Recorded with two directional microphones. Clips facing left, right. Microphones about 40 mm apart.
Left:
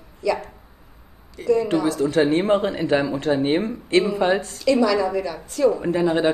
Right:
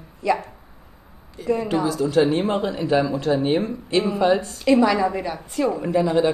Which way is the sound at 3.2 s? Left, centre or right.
Left.